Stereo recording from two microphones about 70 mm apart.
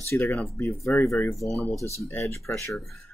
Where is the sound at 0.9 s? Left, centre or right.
Left.